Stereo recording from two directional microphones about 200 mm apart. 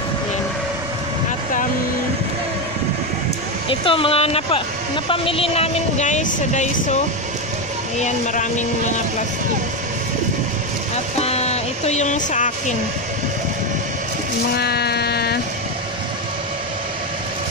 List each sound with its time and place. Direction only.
3.6 s speech: 25° left (ahead or behind)
8.0 s speech: 40° left (ahead or behind)
11.1 s music: 30° left (ahead or behind)
14.6 s a sound: 55° left (ahead or behind)